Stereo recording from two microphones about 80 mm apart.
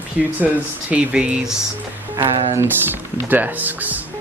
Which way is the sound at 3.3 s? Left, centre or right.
Right.